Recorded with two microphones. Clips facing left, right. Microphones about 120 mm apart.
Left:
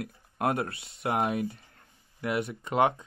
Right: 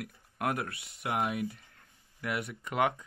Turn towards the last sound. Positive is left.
turn(degrees=25)  # may be behind; listen again after turning